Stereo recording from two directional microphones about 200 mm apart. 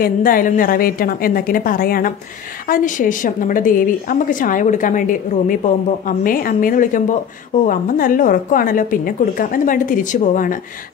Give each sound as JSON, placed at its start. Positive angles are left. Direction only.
{"t": 0.0, "sound": "a woman's voice", "side_deg": 45}